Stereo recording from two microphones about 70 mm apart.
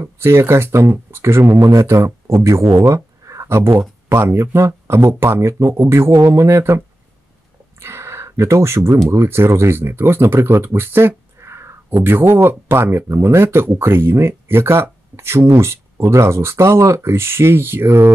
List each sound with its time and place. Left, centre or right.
0.0 s speech: right
1.6 s speech: right
7.8 s speech: right